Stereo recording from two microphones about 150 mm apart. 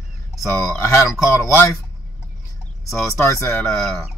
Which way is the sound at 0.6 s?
20° left (ahead or behind).